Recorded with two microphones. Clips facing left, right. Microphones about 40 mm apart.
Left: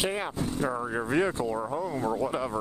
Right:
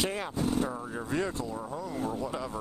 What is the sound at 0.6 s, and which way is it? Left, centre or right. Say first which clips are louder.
Speech: left 3 dB; left.